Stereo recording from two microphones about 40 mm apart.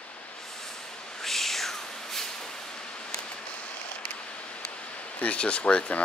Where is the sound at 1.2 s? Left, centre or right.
Centre.